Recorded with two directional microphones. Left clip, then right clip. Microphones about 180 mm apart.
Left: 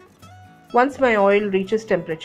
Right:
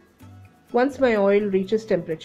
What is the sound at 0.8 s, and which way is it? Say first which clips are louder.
Speech: left 3 dB; 15° right (ahead or behind).